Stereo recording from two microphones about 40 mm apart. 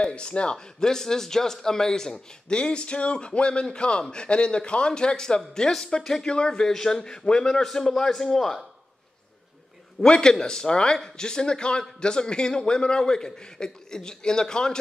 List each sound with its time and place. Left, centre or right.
0.0 s speech: left
0.7 s a man's voice: centre
9.9 s speech: centre